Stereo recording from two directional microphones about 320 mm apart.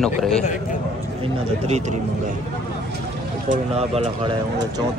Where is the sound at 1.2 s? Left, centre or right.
Right.